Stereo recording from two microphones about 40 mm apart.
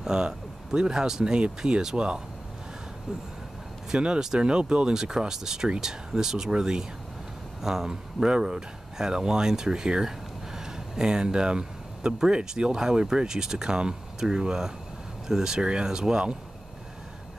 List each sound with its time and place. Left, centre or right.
0.0 s speech: centre
4.2 s speech: centre